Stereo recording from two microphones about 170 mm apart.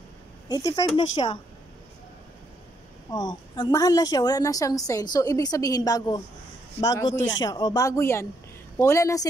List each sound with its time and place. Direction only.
0.5 s a woman's voice: 20° left (ahead or behind)
3.1 s a woman's voice: 25° left (ahead or behind)